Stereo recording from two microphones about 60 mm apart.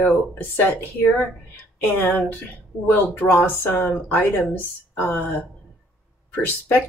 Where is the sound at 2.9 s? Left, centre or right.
Left.